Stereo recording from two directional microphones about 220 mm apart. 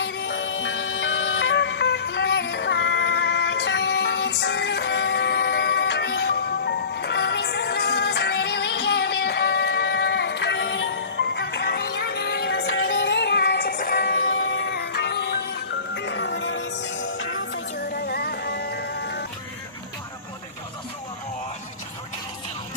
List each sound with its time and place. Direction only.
0.0 s music: 50° left (ahead or behind)
17.7 s music: 45° left (ahead or behind)